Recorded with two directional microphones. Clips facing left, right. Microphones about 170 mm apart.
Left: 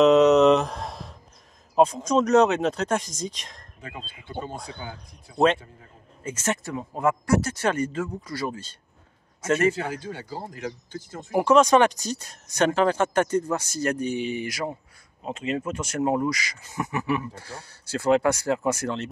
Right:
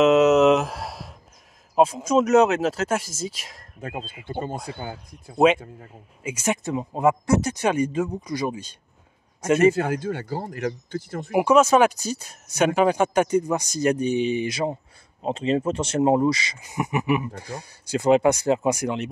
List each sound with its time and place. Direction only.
0.0 s a sound: 5° right (ahead or behind)
1.8 s speech: 5° right (ahead or behind)
4.3 s speech: 50° right (ahead or behind)
4.6 s speech: 5° right (ahead or behind)
9.8 s speech: 50° right (ahead or behind)
11.3 s speech: 10° right (ahead or behind)